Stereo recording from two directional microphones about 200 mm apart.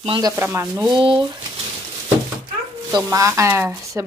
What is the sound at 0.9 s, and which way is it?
Speech, 25° right (ahead or behind).